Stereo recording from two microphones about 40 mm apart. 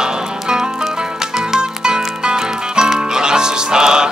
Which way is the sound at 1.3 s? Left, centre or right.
Centre.